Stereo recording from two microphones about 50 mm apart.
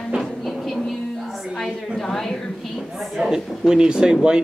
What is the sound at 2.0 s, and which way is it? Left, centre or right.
A woman's voice, centre.